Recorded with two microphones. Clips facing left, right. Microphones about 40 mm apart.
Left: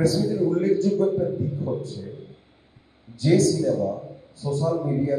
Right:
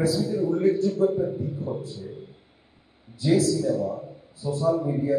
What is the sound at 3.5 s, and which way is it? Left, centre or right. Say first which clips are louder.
Speech: left 2 dB; centre.